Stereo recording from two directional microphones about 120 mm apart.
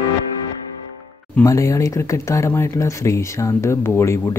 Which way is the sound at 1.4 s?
25° left (ahead or behind).